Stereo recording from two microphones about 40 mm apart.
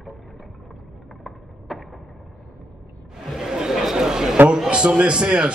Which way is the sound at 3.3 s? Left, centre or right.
Centre.